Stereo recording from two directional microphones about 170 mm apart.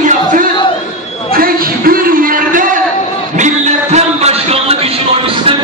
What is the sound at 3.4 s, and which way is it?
Music, 45° right (ahead or behind).